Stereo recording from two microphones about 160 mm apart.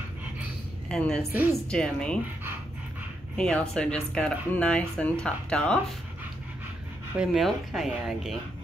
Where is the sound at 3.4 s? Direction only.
5° left (ahead or behind).